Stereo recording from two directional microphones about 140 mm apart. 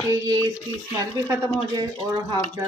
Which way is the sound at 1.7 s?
30° right (ahead or behind).